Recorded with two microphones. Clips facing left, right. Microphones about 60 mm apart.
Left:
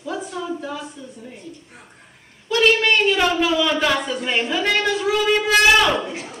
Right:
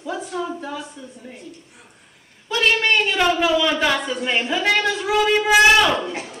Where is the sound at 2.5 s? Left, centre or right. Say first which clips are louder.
Left 2 dB; centre.